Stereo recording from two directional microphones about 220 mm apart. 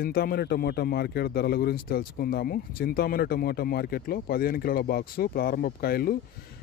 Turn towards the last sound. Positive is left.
turn(degrees=45)  # may be behind; listen again after turning